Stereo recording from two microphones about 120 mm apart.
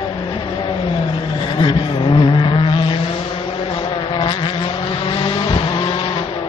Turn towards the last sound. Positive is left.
turn(degrees=45)  # may be behind; listen again after turning